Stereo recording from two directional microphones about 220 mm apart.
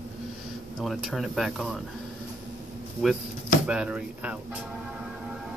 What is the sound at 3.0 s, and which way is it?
Speech, 5° right (ahead or behind).